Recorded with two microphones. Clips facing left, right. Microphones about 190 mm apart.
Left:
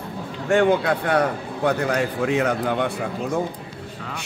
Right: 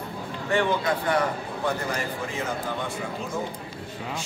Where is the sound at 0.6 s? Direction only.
60° left (ahead or behind).